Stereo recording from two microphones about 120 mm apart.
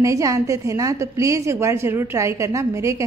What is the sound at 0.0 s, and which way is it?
A woman's voice, 25° right (ahead or behind).